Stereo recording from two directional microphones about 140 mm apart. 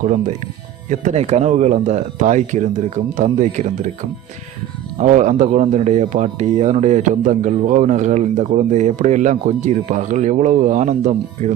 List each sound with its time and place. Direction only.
0.0 s speech: 65° right (ahead or behind)
4.9 s speech: 60° right (ahead or behind)